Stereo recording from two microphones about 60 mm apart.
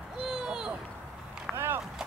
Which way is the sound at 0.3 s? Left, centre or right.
Centre.